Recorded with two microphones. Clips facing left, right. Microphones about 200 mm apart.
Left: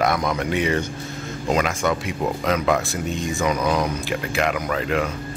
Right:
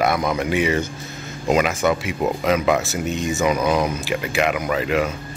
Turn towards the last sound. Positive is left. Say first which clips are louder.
# right 2 dB
turn(degrees=-5)  # may be behind; listen again after turning